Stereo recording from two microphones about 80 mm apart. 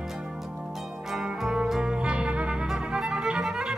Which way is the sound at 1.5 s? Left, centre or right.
Centre.